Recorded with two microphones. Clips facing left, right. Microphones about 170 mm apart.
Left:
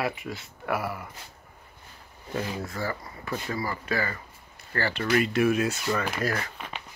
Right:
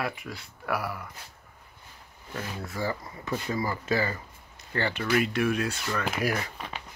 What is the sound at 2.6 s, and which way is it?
Speech, 15° right (ahead or behind).